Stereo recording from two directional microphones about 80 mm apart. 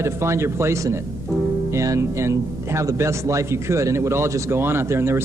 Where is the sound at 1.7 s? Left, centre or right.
Right.